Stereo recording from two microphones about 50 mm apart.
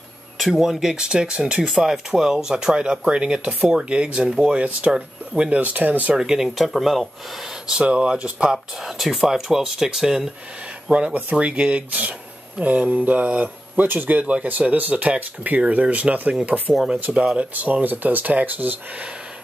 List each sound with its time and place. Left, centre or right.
0.4 s speech: centre
5.6 s speech: right
6.1 s speech: centre
8.7 s speech: centre
10.9 s speech: right
14.2 s speech: right